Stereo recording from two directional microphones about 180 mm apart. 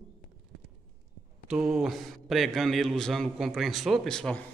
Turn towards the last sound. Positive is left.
turn(degrees=5)  # may be behind; listen again after turning